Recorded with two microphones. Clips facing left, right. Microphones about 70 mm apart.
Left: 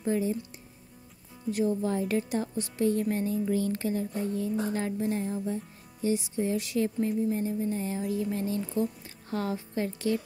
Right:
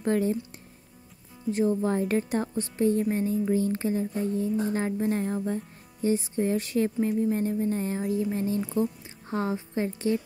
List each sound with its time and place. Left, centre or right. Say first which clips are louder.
0.0 s speech: right 3 dB; right
1.5 s music: right 3 dB; right
3.1 s speech: right 3 dB; right
5.0 s music: right 3 dB; right
6.0 s music: right 3 dB; right
9.3 s speech: right 3 dB; right